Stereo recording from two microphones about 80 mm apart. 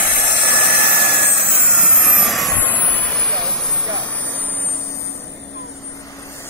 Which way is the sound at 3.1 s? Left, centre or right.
Centre.